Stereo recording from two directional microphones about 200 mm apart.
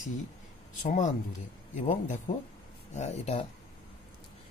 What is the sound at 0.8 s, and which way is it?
Speech, 40° left (ahead or behind).